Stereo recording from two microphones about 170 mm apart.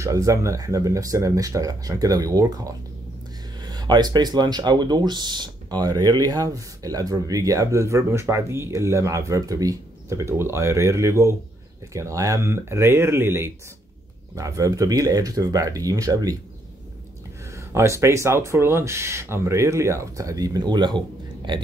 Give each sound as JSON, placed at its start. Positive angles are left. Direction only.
{"t": 0.0, "sound": "speech", "side_deg": -20}
{"t": 17.6, "sound": "speech", "side_deg": -15}